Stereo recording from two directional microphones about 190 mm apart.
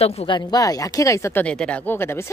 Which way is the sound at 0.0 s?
35° left (ahead or behind).